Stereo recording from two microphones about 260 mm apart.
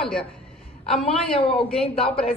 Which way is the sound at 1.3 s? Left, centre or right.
Left.